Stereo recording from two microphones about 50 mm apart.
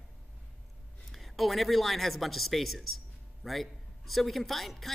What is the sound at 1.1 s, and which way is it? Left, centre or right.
A man's voice, centre.